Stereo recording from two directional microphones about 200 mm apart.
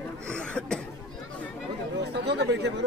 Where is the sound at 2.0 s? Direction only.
55° right (ahead or behind).